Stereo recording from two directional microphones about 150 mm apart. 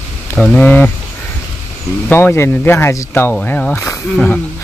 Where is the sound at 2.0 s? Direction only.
15° left (ahead or behind).